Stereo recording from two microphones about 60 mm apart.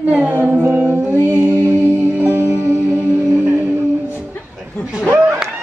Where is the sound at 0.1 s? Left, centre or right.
Right.